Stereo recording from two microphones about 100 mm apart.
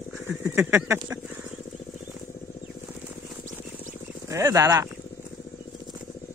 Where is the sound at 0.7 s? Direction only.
25° right (ahead or behind).